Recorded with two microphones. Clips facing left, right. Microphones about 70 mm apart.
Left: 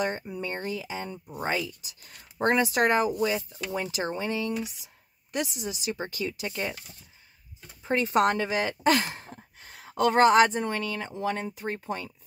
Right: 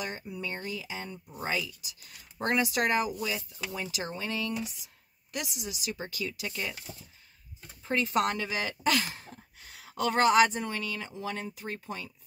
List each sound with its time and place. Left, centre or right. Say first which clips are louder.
0.0 s speech: left 6 dB; left
3.9 s speech: left 5 dB; left
7.8 s speech: left 4 dB; left